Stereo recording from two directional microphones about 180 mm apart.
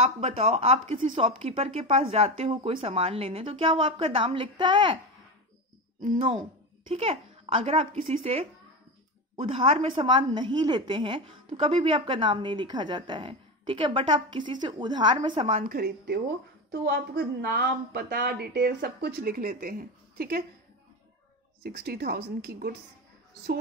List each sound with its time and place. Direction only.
0.2 s speech: 35° right (ahead or behind)
5.9 s a woman's voice: 40° right (ahead or behind)
15.6 s a woman's voice: 55° right (ahead or behind)
21.6 s a woman's voice: 60° right (ahead or behind)